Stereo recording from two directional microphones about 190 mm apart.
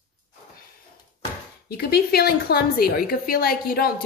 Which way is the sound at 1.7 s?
55° left (ahead or behind).